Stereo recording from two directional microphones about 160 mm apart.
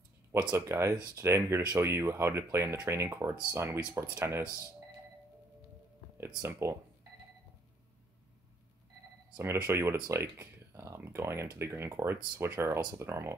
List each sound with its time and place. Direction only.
0.3 s speech: 15° right (ahead or behind)
6.4 s speech: 15° right (ahead or behind)
9.4 s speech: 15° right (ahead or behind)